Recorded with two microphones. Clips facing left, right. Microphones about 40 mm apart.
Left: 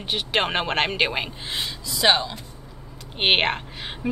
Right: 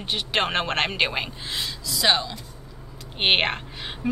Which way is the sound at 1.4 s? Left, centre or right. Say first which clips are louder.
Left 1 dB; left.